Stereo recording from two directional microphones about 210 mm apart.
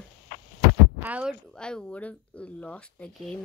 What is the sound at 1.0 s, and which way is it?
Speech, 5° right (ahead or behind).